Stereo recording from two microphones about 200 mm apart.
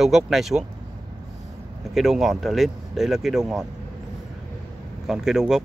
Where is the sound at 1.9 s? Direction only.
Centre (ahead or behind).